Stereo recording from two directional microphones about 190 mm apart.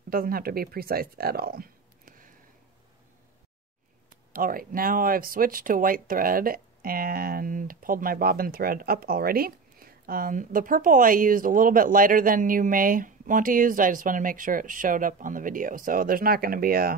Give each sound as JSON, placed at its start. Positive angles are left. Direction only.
{"t": 0.1, "sound": "speech", "side_deg": -50}
{"t": 4.3, "sound": "speech", "side_deg": -50}